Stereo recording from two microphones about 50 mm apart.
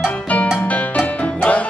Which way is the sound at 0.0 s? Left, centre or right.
Left.